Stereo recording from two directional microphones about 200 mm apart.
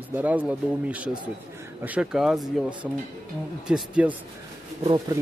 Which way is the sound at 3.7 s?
5° right (ahead or behind).